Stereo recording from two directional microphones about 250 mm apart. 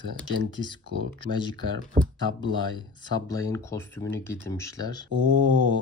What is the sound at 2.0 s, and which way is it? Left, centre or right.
Speech, right.